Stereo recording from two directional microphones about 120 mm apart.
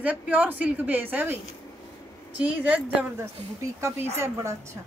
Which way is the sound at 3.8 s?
20° right (ahead or behind).